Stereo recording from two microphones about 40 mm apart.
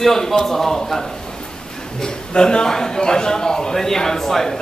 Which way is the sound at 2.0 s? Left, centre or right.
Left.